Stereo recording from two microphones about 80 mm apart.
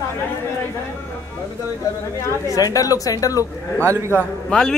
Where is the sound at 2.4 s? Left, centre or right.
Left.